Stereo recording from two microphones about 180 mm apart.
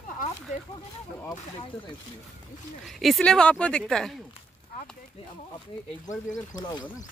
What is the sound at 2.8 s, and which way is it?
Speech, centre (ahead or behind).